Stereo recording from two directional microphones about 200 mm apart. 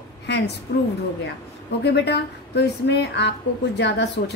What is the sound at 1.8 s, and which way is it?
A woman's voice, 55° left (ahead or behind).